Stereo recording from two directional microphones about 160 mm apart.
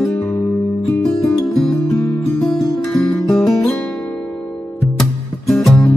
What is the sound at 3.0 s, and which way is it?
Music, 10° left (ahead or behind).